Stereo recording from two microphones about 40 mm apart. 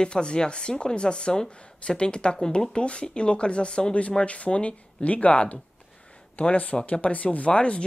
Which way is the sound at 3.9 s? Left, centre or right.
Left.